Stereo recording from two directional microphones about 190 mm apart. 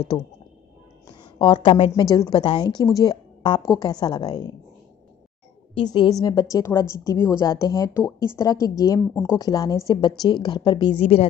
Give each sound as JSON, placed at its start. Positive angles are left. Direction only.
{"t": 1.0, "sound": "a sound", "side_deg": 25}
{"t": 1.9, "sound": "a woman's voice", "side_deg": 20}
{"t": 5.8, "sound": "a woman's voice", "side_deg": 20}